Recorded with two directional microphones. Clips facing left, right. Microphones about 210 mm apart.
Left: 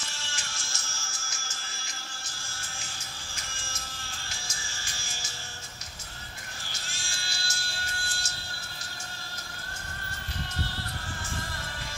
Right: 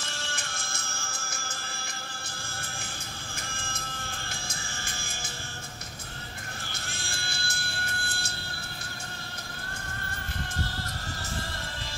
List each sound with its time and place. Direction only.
0.0 s music: 55° right (ahead or behind)
3.5 s music: 55° right (ahead or behind)
6.7 s music: 60° right (ahead or behind)